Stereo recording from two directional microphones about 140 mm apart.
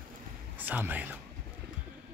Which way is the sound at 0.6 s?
15° right (ahead or behind).